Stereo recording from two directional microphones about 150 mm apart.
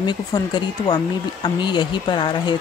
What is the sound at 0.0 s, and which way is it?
Speech, 30° left (ahead or behind).